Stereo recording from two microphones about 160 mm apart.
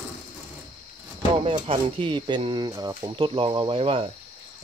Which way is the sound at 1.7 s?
30° right (ahead or behind).